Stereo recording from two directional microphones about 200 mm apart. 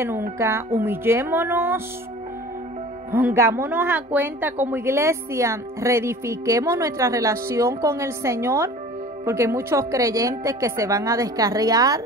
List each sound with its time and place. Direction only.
0.4 s a woman's voice: 15° right (ahead or behind)
3.1 s a woman's voice: 10° right (ahead or behind)